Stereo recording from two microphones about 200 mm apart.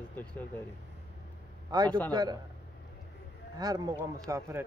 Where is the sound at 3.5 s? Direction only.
20° right (ahead or behind).